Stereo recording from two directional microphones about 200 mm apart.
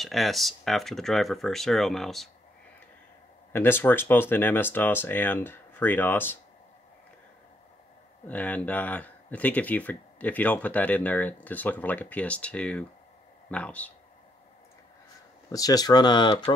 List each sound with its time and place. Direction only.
0.0 s speech: centre (ahead or behind)
3.5 s speech: 10° left (ahead or behind)
8.3 s speech: 10° left (ahead or behind)
15.5 s speech: 20° left (ahead or behind)